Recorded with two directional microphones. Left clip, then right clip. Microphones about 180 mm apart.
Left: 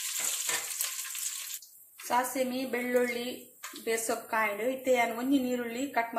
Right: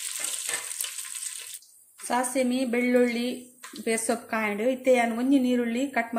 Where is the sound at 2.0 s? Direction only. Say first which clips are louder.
Right 3 dB; 55° right (ahead or behind).